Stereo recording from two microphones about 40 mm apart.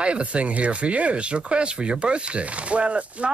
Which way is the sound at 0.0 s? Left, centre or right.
Right.